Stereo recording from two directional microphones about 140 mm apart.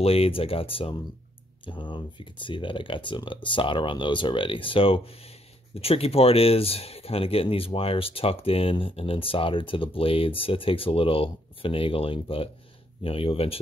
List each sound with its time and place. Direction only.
0.0 s speech: 45° left (ahead or behind)